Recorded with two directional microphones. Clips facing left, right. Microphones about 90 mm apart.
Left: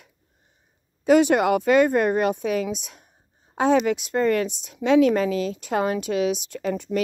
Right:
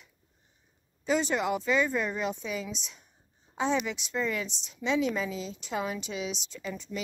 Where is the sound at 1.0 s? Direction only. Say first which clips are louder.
Left 11 dB; 60° left (ahead or behind).